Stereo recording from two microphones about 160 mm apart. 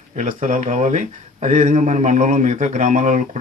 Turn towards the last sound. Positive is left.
turn(degrees=-50)  # may be behind; listen again after turning